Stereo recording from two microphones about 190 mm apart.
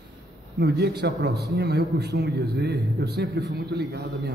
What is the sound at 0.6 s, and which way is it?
A man's voice, 60° right (ahead or behind).